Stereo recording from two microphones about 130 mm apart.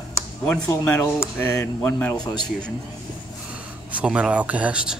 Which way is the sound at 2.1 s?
30° left (ahead or behind).